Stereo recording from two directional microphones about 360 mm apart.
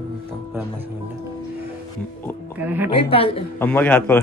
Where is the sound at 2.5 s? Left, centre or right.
Centre.